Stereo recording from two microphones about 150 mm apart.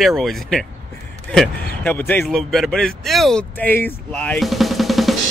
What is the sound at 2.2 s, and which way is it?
Speech, centre (ahead or behind).